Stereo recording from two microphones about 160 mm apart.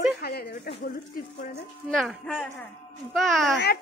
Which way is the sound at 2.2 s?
5° left (ahead or behind).